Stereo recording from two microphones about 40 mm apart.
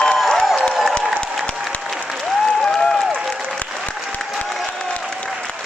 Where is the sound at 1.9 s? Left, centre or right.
Centre.